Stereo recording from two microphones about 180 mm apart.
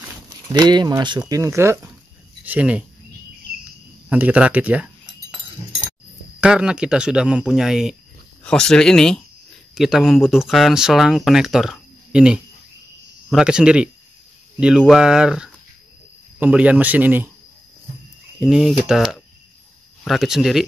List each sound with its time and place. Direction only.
0.5 s speech: 25° right (ahead or behind); by 2.8 s 10° right (ahead or behind)
4.1 s speech: 5° right (ahead or behind)
6.4 s speech: 5° right (ahead or behind)
18.5 s speech: 5° right (ahead or behind)